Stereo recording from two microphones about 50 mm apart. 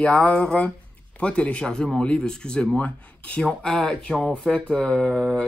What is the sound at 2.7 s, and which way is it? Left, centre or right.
Speech, left.